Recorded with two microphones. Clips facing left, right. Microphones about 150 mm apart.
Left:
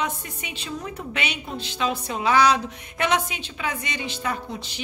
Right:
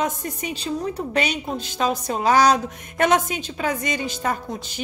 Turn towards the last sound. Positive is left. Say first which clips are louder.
# right 2 dB
turn(degrees=-45)  # may be behind; listen again after turning